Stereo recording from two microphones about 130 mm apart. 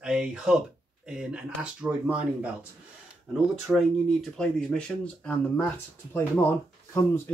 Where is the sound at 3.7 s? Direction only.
5° left (ahead or behind).